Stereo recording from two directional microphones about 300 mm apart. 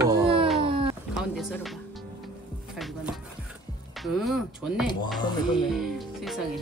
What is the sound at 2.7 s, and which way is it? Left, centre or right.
Speech, centre.